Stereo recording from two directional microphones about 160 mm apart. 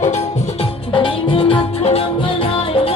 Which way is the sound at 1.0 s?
35° left (ahead or behind).